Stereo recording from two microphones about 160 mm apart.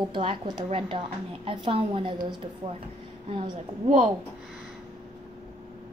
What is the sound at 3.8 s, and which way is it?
Speech, 50° right (ahead or behind).